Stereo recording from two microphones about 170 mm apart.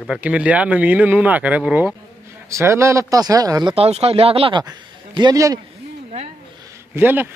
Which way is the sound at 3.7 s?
35° right (ahead or behind).